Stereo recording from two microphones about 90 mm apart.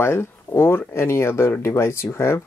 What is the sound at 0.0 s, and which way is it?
Speech, 25° left (ahead or behind).